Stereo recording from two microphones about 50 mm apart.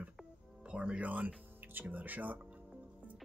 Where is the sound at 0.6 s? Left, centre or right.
Right.